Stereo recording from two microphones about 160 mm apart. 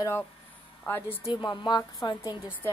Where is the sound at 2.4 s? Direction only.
10° left (ahead or behind).